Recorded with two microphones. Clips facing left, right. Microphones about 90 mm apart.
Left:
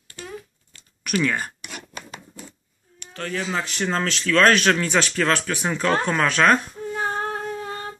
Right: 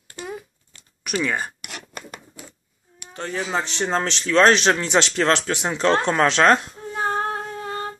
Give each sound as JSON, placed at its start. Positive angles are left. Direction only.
{"t": 0.7, "sound": "a sound", "side_deg": -25}
{"t": 1.6, "sound": "rub", "side_deg": -65}
{"t": 3.1, "sound": "speech", "side_deg": -20}